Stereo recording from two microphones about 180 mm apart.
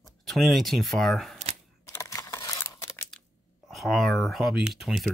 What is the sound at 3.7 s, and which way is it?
Speech, centre (ahead or behind).